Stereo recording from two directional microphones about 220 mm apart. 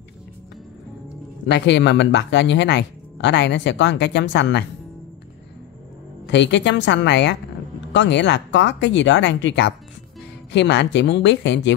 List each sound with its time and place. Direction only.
1.4 s speech: 50° left (ahead or behind)
6.2 s speech: 55° left (ahead or behind)